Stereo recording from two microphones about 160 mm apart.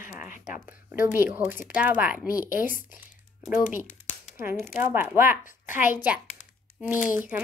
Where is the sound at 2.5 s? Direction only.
60° left (ahead or behind).